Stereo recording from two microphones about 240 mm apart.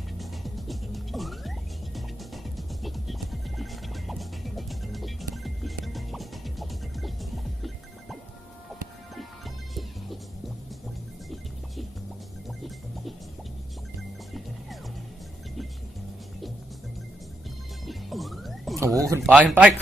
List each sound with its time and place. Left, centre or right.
0.2 s music: centre
12.4 s music: centre
17.8 s music: centre
18.9 s speech: centre